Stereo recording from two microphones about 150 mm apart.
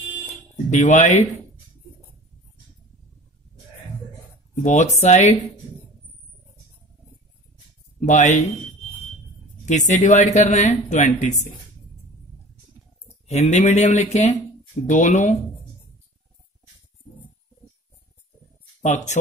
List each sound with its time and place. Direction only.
0.7 s speech: 50° left (ahead or behind)
4.6 s speech: 50° left (ahead or behind)
8.0 s speech: 55° left (ahead or behind)
9.7 s speech: 50° left (ahead or behind)
13.3 s speech: 45° left (ahead or behind)
18.8 s speech: 50° left (ahead or behind)